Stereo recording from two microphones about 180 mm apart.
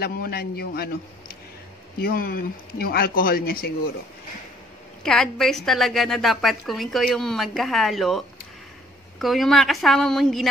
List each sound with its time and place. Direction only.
0.0 s speech: 60° left (ahead or behind)
2.0 s speech: 55° left (ahead or behind)
5.0 s a woman's voice: 5° left (ahead or behind)
9.2 s a woman's voice: centre (ahead or behind)